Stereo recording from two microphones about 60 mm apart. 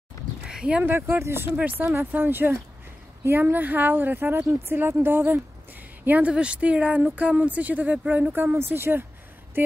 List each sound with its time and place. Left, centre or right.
0.5 s a sound: centre
0.8 s speech: right
1.5 s speech: right
2.0 s speech: right
6.0 s speech: right